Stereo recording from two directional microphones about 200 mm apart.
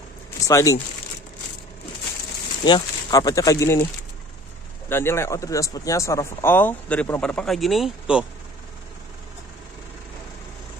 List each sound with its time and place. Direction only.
0.5 s speech: 15° left (ahead or behind)
2.6 s speech: 20° left (ahead or behind)
4.8 s speech: 10° left (ahead or behind)